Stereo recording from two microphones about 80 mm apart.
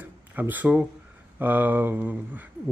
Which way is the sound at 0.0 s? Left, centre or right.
Right.